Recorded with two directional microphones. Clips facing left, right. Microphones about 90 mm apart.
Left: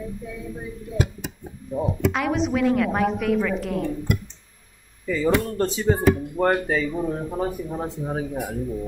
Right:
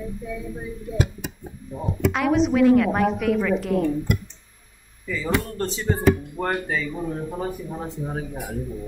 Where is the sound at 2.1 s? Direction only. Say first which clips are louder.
Right 3 dB; centre (ahead or behind).